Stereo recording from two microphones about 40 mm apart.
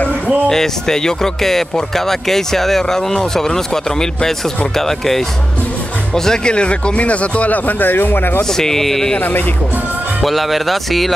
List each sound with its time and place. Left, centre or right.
0.5 s speech: centre; by 8.4 s left
8.5 s speech: centre
10.2 s speech: centre